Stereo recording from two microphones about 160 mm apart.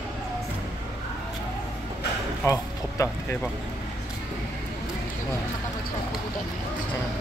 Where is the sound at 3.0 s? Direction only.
20° left (ahead or behind).